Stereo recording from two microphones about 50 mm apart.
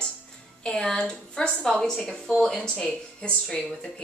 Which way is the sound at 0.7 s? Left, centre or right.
Centre.